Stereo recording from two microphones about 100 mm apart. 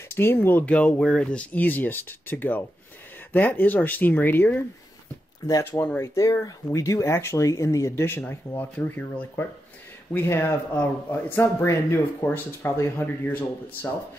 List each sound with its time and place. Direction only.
0.1 s speech: 25° left (ahead or behind)
6.1 s speech: 35° left (ahead or behind)